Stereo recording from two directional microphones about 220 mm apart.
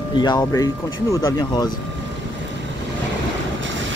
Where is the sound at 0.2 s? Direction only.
15° left (ahead or behind).